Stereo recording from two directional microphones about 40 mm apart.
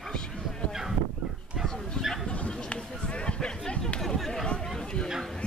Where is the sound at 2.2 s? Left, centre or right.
Left.